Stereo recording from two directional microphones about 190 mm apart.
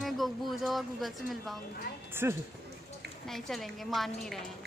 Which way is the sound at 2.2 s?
10° right (ahead or behind).